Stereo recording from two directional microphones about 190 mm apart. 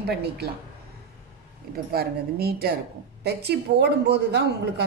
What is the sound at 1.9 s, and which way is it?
Speech, 55° right (ahead or behind).